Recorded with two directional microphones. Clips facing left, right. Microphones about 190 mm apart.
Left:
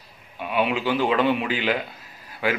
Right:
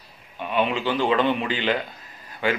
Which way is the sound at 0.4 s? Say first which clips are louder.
Even; 10° left (ahead or behind).